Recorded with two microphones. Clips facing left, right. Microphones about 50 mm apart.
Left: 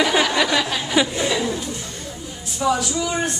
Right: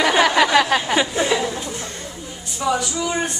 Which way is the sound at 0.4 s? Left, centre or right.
Right.